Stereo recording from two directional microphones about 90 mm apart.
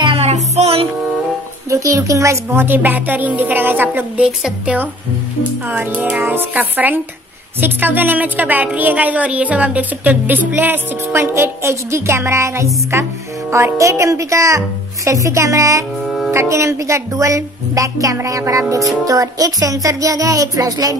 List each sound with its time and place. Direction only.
1.7 s speech: 35° right (ahead or behind)
2.6 s a woman's voice: 20° right (ahead or behind)
4.4 s music: 10° right (ahead or behind)
6.2 s a woman's voice: 20° right (ahead or behind); by 21.0 s 45° right (ahead or behind)